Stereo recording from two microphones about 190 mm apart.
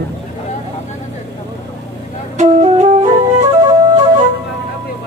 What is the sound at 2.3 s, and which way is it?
Flute, 35° right (ahead or behind).